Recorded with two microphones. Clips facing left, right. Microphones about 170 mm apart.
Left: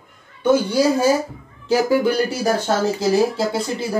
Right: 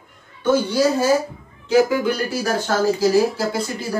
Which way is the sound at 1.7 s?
35° left (ahead or behind).